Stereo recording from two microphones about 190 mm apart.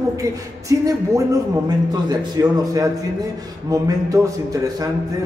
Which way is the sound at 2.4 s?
15° right (ahead or behind).